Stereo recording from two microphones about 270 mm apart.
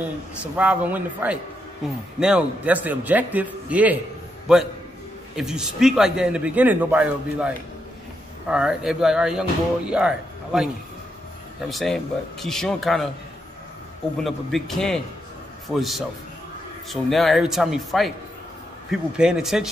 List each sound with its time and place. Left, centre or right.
0.4 s a man's voice: centre
11.7 s a man's voice: centre
14.2 s a man's voice: centre